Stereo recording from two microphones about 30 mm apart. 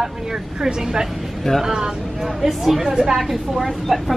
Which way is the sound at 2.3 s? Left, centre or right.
Centre.